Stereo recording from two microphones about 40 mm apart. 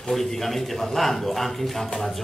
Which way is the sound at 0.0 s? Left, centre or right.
Centre.